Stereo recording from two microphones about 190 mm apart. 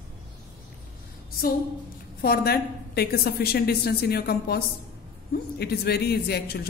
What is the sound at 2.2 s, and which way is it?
A woman's voice, 55° left (ahead or behind).